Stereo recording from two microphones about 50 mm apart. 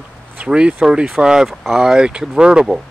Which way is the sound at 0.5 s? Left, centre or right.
Centre.